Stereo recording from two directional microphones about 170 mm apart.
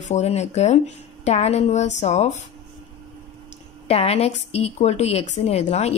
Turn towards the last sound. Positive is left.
turn(degrees=40)  # may be behind; listen again after turning